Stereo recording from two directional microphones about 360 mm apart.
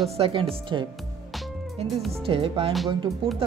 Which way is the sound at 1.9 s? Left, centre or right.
Centre.